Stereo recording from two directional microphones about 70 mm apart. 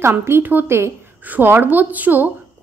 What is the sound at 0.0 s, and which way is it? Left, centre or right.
Speech, right.